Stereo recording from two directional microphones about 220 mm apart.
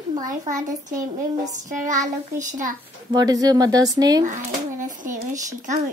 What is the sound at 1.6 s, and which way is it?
A child's voice, 35° right (ahead or behind).